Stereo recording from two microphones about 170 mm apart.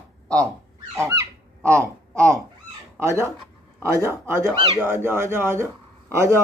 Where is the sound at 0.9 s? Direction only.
15° right (ahead or behind).